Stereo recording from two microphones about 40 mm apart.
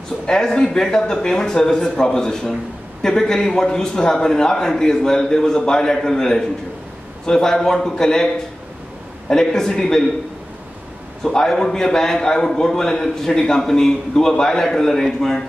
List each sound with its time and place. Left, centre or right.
0.6 s a man's voice: centre
9.3 s a man's voice: centre
11.2 s a man's voice: centre